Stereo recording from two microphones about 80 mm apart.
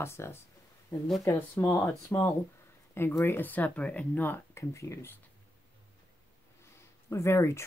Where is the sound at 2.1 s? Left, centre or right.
Left.